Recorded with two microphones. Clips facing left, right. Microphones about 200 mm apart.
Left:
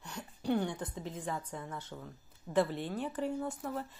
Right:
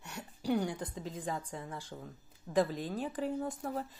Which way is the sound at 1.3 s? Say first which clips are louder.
Right 1 dB; 30° right (ahead or behind).